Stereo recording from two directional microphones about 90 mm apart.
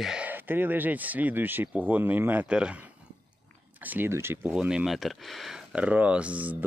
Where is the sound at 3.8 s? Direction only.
20° right (ahead or behind).